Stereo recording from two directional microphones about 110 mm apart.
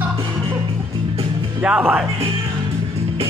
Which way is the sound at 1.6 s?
10° right (ahead or behind).